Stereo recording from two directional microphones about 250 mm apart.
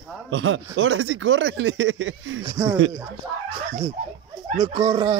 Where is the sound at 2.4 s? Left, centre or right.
Centre.